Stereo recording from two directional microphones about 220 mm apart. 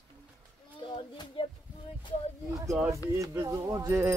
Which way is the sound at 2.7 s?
15° right (ahead or behind).